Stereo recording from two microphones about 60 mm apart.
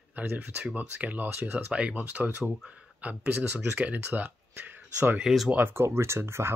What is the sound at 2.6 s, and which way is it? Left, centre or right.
Speech, centre.